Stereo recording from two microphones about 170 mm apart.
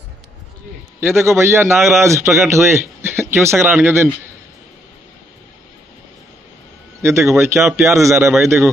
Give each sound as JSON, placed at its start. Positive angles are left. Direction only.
{"t": 1.0, "sound": "a man's voice", "side_deg": -15}
{"t": 7.0, "sound": "a man's voice", "side_deg": -15}